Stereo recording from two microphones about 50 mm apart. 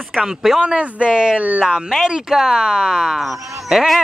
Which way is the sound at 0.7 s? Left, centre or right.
Right.